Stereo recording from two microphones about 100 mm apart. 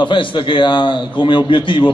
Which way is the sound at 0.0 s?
55° left (ahead or behind).